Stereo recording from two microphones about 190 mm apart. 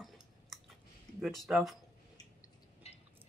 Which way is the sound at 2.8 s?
35° left (ahead or behind).